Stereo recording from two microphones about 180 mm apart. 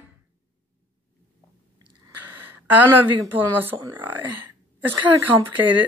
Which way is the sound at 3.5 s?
10° right (ahead or behind).